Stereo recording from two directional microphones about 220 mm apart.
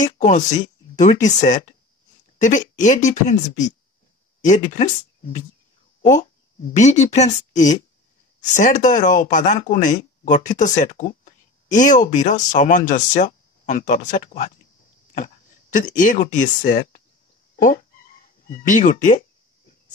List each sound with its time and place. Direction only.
0.0 s speech: 35° left (ahead or behind)
6.8 s speech: 30° left (ahead or behind)
18.5 s speech: 35° left (ahead or behind)